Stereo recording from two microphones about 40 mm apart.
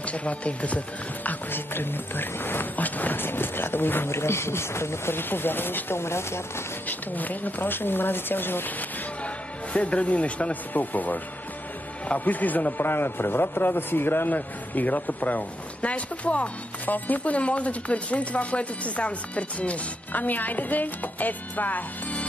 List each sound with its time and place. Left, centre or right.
0.0 s speech: left
1.5 s a man's voice: left
3.2 s speech: left
6.9 s a man's voice: left
9.2 s speech: left
12.3 s a man's voice: left
14.3 s speech: left
15.8 s speech: left
16.8 s speech: left
17.2 s speech: left
20.1 s speech: left